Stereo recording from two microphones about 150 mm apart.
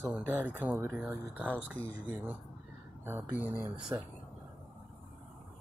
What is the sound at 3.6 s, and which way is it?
Speech, 10° right (ahead or behind).